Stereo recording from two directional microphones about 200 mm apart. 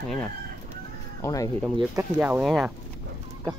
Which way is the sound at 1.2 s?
15° left (ahead or behind).